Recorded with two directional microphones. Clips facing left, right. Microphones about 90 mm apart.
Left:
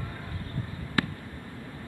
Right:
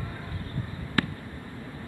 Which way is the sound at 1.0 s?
Centre (ahead or behind).